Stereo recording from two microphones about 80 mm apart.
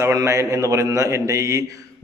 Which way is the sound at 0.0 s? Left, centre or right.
Right.